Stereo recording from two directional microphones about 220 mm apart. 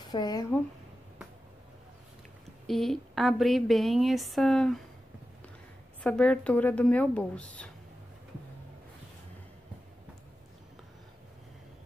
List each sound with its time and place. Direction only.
0.0 s speech: 20° left (ahead or behind)
2.6 s a woman's voice: centre (ahead or behind)
6.0 s a woman's voice: 5° left (ahead or behind)